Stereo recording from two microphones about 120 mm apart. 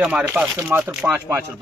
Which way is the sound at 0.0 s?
10° right (ahead or behind).